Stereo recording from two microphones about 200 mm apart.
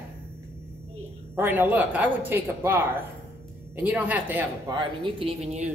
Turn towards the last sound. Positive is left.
turn(degrees=-35)  # may be behind; listen again after turning